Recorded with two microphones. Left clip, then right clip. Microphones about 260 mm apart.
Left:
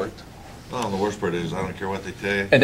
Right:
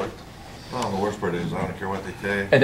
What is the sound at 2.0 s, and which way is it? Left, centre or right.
Speech, right.